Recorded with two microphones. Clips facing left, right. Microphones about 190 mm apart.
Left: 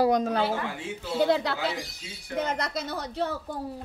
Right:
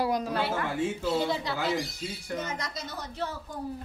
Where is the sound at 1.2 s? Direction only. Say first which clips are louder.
Left 5 dB; 70° left (ahead or behind).